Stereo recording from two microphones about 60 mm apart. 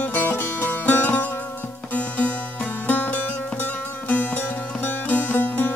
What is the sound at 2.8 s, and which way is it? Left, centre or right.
Music, left.